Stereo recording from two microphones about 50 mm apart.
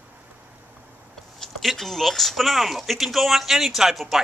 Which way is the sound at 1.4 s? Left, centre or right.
Centre.